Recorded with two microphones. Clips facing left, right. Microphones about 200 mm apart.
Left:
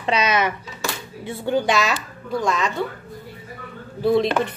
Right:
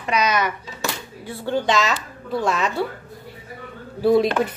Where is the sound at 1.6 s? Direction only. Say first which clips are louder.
Even; 10° left (ahead or behind).